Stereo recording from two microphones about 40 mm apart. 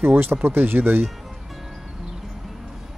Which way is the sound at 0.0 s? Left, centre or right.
Right.